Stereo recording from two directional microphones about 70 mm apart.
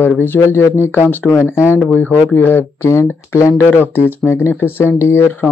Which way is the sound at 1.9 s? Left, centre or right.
Left.